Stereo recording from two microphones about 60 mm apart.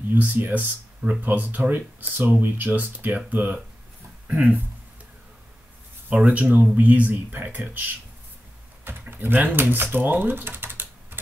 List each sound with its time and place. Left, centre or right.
0.1 s speech: right
6.0 s speech: right
9.1 s speech: right